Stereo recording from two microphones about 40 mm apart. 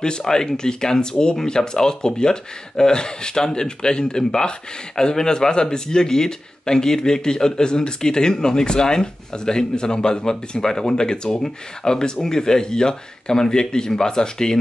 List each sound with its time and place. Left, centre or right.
0.2 s speech: centre